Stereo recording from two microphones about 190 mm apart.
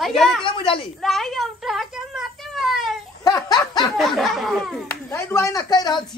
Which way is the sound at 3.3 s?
20° left (ahead or behind).